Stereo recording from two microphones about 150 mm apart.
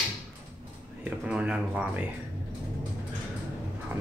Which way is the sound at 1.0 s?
5° right (ahead or behind).